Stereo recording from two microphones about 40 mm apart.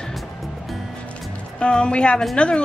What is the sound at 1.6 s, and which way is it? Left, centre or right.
A woman's voice, left.